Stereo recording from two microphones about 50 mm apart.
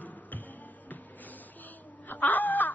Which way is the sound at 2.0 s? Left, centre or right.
Left.